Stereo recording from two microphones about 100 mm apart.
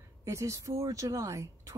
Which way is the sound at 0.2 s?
30° right (ahead or behind).